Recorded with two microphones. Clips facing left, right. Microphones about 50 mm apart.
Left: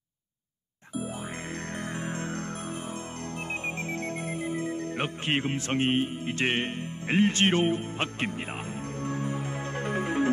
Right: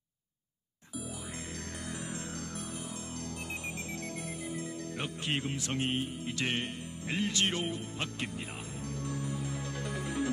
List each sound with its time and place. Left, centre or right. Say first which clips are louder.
2.0 s music: left 7 dB; left
3.9 s music: left 7 dB; left